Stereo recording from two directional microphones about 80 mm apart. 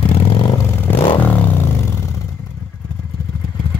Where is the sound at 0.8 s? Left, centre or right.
Left.